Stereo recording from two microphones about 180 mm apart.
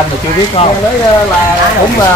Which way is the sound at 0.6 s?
35° left (ahead or behind).